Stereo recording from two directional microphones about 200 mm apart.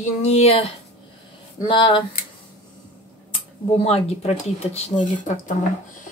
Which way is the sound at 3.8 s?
30° left (ahead or behind).